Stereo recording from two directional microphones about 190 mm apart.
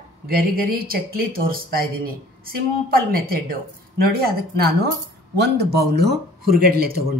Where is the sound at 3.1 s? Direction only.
50° right (ahead or behind).